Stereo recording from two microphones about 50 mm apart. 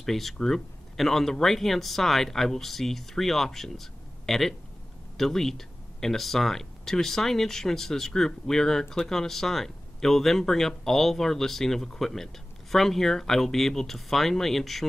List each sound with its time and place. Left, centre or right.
0.0 s speech: centre